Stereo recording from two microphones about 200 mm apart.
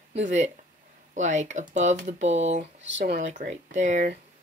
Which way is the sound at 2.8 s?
60° right (ahead or behind).